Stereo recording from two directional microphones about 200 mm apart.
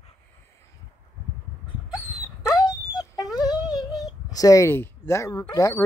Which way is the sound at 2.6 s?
20° left (ahead or behind).